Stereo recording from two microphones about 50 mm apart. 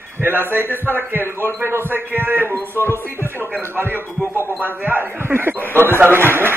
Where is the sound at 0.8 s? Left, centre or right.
Right.